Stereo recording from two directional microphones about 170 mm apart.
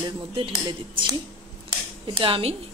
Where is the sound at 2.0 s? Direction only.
30° right (ahead or behind).